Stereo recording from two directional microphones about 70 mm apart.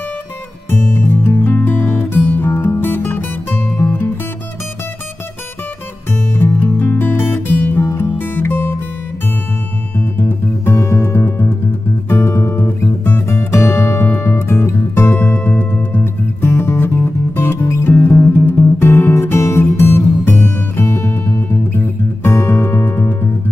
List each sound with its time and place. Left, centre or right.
0.7 s music: left
6.3 s music: left
9.9 s music: left
10.7 s music: left
14.0 s music: left